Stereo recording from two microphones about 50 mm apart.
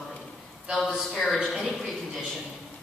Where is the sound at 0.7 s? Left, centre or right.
Centre.